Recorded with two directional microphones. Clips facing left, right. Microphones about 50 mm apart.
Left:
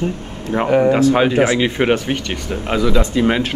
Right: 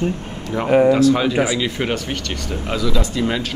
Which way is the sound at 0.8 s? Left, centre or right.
Left.